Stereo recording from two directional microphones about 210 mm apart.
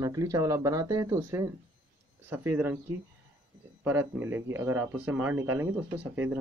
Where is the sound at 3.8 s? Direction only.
10° right (ahead or behind).